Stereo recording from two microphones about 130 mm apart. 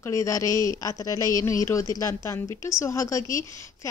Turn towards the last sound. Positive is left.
turn(degrees=25)  # may be behind; listen again after turning